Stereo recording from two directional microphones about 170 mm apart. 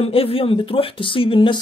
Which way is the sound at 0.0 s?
35° left (ahead or behind).